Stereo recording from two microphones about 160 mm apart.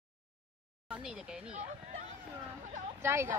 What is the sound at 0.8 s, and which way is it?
Speech, 5° right (ahead or behind).